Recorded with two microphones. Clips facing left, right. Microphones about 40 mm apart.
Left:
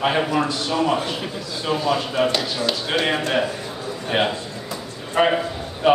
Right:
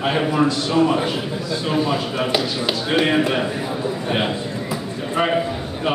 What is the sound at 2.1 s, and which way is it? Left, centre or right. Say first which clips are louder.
Speech: even; centre.